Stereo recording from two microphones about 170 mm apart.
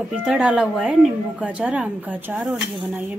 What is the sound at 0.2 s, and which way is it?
A woman's voice, 5° right (ahead or behind).